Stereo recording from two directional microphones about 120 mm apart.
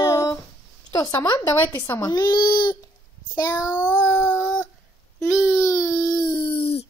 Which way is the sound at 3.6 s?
15° right (ahead or behind).